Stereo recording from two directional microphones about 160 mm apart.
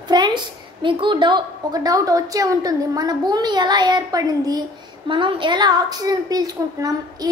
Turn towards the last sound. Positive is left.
turn(degrees=-25)  # may be behind; listen again after turning